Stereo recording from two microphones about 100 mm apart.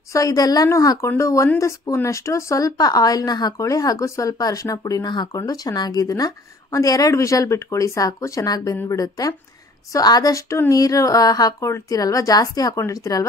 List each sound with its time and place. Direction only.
0.1 s speech: 40° left (ahead or behind)